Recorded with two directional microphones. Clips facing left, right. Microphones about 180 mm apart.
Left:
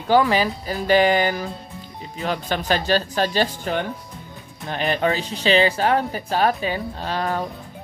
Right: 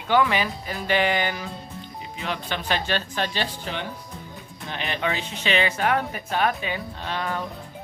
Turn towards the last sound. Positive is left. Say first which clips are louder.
# left 4 dB
turn(degrees=40)  # may be behind; listen again after turning